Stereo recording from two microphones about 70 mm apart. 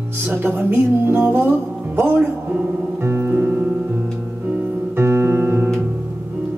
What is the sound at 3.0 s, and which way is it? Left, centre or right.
Music, right.